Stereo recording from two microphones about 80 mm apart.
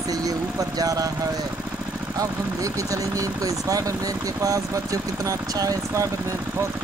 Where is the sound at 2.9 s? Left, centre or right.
Right.